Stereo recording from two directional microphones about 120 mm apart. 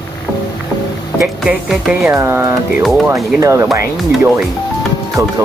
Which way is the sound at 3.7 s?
Centre (ahead or behind).